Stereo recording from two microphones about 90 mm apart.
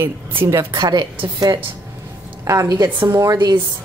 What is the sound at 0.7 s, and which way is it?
Speech, 55° right (ahead or behind).